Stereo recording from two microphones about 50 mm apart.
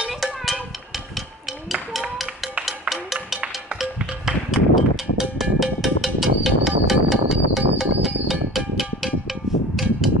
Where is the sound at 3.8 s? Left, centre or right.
Centre.